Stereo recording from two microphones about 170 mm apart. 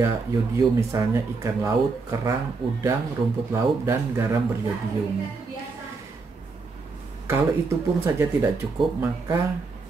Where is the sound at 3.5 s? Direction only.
15° right (ahead or behind).